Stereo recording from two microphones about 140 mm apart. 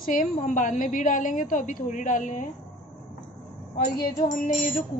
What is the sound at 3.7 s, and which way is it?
A woman's voice, 85° left.